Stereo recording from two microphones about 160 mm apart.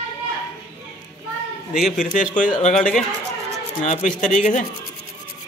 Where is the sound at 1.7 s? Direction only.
5° right (ahead or behind).